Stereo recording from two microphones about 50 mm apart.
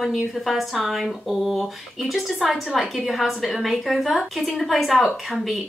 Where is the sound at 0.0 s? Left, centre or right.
Centre.